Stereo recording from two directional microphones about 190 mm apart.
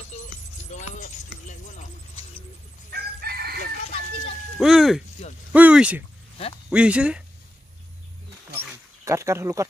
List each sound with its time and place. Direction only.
0.7 s a sound: 40° left (ahead or behind)
2.9 s chicken: 55° right (ahead or behind)
4.6 s speech: centre (ahead or behind)
6.3 s a sound: 30° left (ahead or behind)
6.7 s speech: 5° right (ahead or behind)
9.0 s speech: 15° right (ahead or behind)